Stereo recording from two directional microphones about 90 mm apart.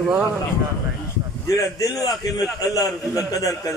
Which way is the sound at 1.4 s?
45° left (ahead or behind).